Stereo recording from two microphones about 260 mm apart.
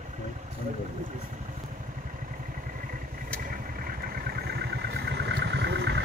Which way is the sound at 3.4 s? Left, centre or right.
Right.